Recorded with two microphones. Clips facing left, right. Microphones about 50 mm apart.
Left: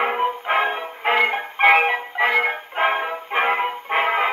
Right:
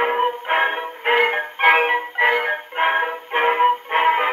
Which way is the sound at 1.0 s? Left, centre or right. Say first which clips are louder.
Right 1 dB; right.